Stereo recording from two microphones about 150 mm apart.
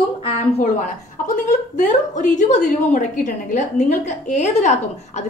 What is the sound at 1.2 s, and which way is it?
A woman's voice, 55° left (ahead or behind).